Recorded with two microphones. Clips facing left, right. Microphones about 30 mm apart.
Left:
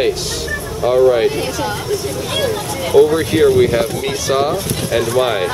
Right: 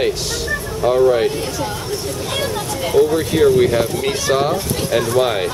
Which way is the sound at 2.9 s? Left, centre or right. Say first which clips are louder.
Left 4 dB; left.